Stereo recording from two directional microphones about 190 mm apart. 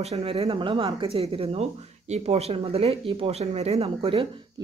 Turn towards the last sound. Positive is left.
turn(degrees=-30)  # may be behind; listen again after turning